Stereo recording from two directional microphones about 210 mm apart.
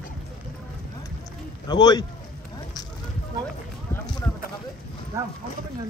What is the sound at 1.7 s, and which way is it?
Speech, 20° left (ahead or behind).